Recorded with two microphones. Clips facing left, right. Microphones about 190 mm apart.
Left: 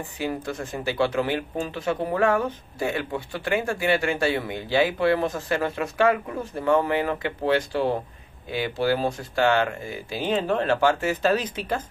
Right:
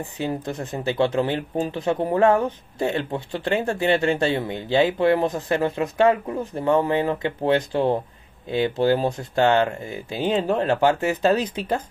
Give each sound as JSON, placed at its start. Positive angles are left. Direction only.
{"t": 0.2, "sound": "speech", "side_deg": -20}